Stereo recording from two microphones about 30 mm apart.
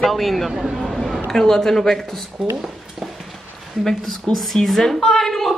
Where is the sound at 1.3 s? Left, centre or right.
Centre.